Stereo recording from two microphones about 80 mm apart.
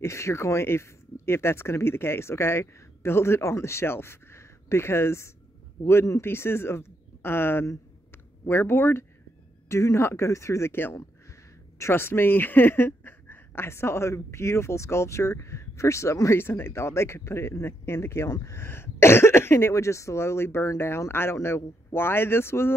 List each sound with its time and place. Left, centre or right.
0.0 s speech: left